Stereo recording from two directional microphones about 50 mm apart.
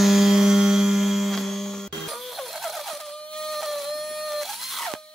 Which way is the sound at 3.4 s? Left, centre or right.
Centre.